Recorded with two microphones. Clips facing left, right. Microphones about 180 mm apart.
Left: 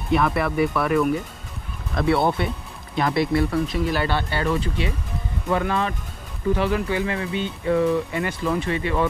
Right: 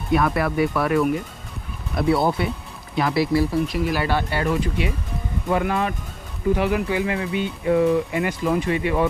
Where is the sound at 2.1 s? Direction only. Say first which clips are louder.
Even; centre (ahead or behind).